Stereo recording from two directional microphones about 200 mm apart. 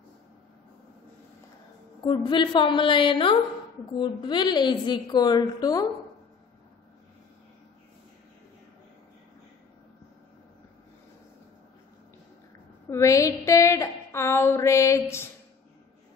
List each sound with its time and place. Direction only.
2.0 s a woman's voice: 25° left (ahead or behind)
12.9 s a woman's voice: 15° left (ahead or behind)